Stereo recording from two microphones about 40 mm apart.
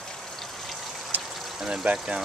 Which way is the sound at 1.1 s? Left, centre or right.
Right.